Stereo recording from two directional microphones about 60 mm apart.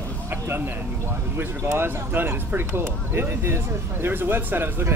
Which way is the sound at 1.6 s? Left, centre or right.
Right.